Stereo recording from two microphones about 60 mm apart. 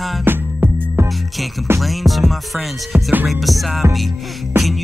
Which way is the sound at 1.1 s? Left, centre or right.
Centre.